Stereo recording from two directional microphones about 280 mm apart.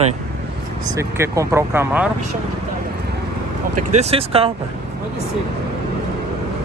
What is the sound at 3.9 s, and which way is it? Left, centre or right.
Speech, right.